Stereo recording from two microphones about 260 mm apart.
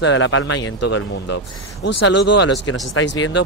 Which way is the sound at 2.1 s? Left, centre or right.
Left.